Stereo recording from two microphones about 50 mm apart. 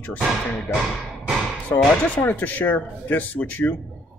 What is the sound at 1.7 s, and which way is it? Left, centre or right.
Speech, left.